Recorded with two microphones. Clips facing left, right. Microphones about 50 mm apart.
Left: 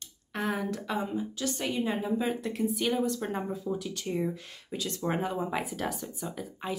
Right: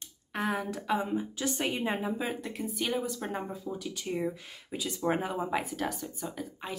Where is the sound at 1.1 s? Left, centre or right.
Right.